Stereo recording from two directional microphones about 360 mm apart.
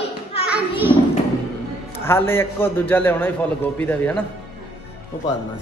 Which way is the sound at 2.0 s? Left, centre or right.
Centre.